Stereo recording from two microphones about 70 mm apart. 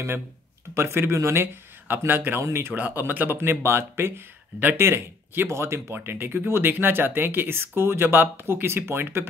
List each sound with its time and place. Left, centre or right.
0.7 s speech: right
3.0 s speech: right